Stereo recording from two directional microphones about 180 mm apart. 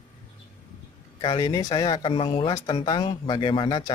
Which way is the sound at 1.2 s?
20° left (ahead or behind).